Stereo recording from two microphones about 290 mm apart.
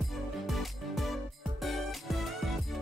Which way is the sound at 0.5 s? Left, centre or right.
Centre.